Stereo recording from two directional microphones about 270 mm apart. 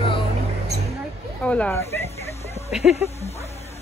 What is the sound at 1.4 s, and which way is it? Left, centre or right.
Speech, centre.